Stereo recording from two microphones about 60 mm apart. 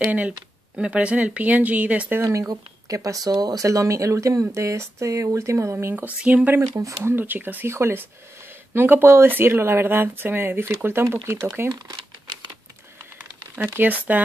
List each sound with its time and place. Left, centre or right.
0.7 s speech: right
2.2 s speech: right
5.9 s speech: right
6.6 s speech: right
7.1 s speech: right
7.6 s speech: right
13.7 s speech: right